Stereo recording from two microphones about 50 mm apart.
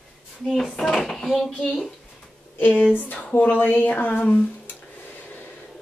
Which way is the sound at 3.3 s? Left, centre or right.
Left.